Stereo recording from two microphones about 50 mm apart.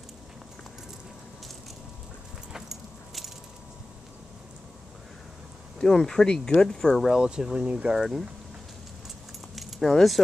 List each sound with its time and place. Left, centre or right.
2.5 s keys jangling: centre
5.8 s speech: centre
7.1 s speech: centre
8.0 s speech: centre
9.6 s keys jangling: centre